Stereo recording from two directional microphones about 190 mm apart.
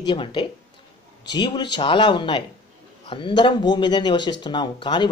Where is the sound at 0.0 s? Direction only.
25° left (ahead or behind).